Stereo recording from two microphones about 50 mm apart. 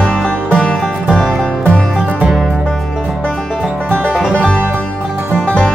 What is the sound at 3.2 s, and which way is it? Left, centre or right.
Music, centre.